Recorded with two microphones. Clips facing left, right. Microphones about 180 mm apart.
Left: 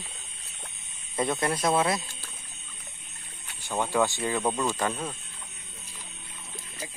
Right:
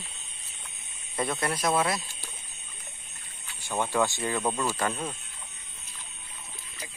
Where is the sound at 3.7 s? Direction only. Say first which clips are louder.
Left 1 dB; 15° left (ahead or behind).